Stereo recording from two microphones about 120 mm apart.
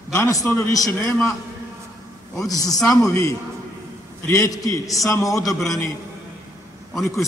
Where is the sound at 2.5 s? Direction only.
30° left (ahead or behind).